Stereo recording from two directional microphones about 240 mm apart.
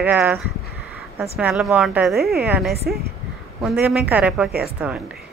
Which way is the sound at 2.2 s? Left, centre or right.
Right.